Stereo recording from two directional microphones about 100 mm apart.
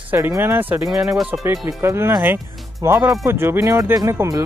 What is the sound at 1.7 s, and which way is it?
Speech, 30° right (ahead or behind).